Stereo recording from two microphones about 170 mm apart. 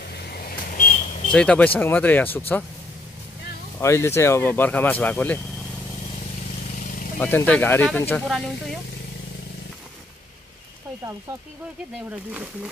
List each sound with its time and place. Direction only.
0.1 s a sound: 65° left (ahead or behind); by 1.0 s 50° left (ahead or behind)
1.3 s speech: 5° left (ahead or behind)
3.8 s speech: 15° left (ahead or behind)
7.2 s speech: 10° left (ahead or behind)